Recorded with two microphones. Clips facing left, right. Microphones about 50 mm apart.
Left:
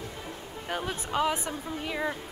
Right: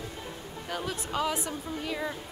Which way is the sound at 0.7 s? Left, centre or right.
Left.